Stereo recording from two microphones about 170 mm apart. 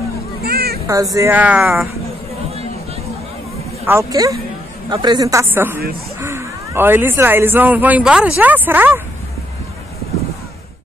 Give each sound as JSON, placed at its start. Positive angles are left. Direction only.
{"t": 0.4, "sound": "children playing", "side_deg": -65}
{"t": 1.1, "sound": "speech", "side_deg": -15}
{"t": 3.8, "sound": "a woman's voice", "side_deg": -15}